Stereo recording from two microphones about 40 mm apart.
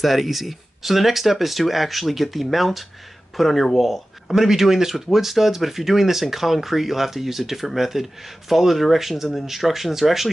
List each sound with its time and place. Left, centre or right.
0.0 s speech: centre